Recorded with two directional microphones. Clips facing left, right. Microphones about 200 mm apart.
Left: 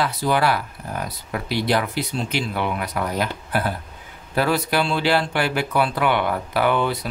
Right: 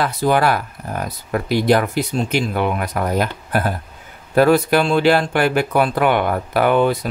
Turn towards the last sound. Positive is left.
turn(degrees=-50)  # may be behind; listen again after turning